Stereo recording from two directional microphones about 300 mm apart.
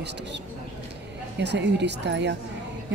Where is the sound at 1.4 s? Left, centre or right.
Right.